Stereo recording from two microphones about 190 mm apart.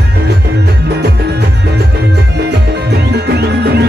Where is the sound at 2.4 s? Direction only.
60° right (ahead or behind).